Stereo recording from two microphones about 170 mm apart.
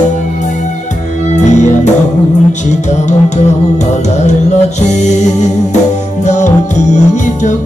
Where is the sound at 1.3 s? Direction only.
45° left (ahead or behind).